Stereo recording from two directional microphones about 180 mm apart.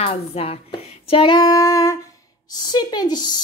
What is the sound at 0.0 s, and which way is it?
A woman's voice, 35° left (ahead or behind).